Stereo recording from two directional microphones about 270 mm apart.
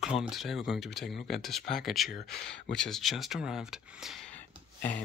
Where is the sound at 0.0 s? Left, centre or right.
Centre.